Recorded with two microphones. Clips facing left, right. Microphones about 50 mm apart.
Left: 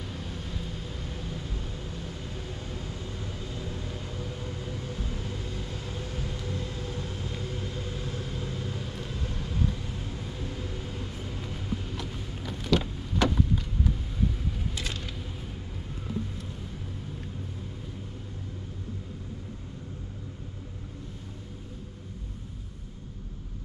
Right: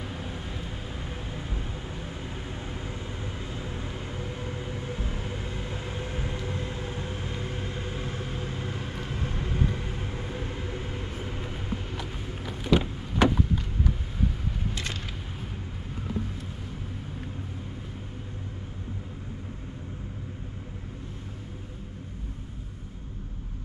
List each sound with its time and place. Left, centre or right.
0.0 s vehicle: right
12.0 s vehicle: centre